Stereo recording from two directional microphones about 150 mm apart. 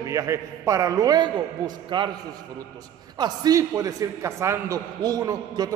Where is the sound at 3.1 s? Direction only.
25° right (ahead or behind).